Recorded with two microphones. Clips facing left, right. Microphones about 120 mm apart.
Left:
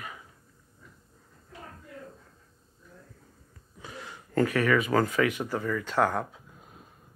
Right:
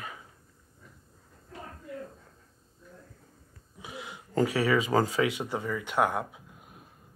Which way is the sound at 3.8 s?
15° right (ahead or behind).